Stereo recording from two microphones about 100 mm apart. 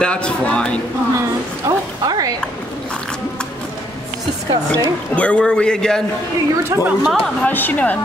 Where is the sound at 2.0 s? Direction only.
40° right (ahead or behind).